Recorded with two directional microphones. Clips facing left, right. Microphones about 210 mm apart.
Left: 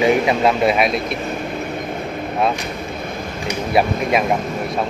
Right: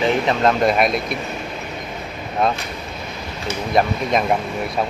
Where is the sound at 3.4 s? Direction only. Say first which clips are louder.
Left 1 dB; 10° left (ahead or behind).